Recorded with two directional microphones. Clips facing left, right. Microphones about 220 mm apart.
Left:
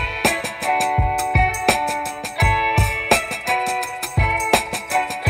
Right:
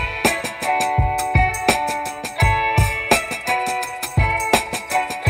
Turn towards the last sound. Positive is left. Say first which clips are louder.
# even
turn(degrees=0)  # may be behind; listen again after turning